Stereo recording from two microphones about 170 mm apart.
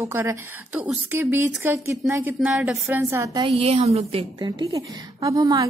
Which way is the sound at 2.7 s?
Centre (ahead or behind).